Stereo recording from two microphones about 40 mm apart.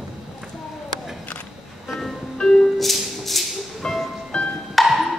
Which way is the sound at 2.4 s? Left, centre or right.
Centre.